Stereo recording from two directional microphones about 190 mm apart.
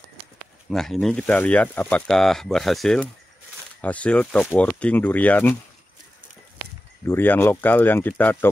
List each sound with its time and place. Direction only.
0.7 s speech: centre (ahead or behind)
7.1 s speech: 10° left (ahead or behind)